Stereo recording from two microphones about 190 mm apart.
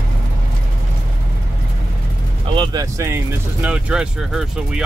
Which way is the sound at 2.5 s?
25° right (ahead or behind).